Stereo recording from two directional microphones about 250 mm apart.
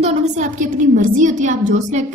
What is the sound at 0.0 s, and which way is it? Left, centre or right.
A woman's voice, right.